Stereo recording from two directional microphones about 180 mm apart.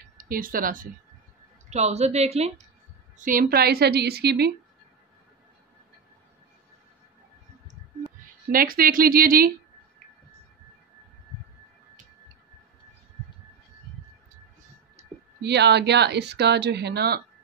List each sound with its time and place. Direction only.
0.2 s speech: 50° right (ahead or behind)
1.7 s a woman's voice: 35° right (ahead or behind)
3.2 s a woman's voice: 50° right (ahead or behind)
8.5 s a woman's voice: 55° right (ahead or behind)
15.4 s a woman's voice: 70° right (ahead or behind)